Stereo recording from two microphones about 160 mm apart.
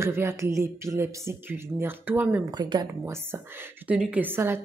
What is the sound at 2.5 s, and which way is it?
Speech, 25° right (ahead or behind).